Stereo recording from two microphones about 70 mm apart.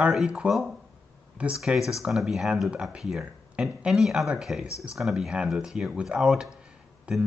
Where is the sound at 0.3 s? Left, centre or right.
Centre.